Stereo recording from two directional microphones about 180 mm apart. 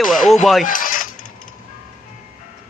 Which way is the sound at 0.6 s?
50° left (ahead or behind).